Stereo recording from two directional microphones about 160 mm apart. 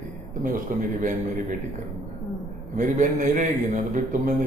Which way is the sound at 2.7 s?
50° right (ahead or behind).